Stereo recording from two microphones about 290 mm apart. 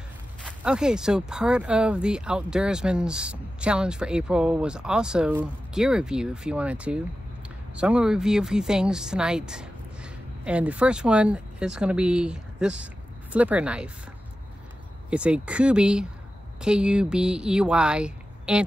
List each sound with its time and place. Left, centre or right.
0.5 s speech: centre
15.0 s speech: centre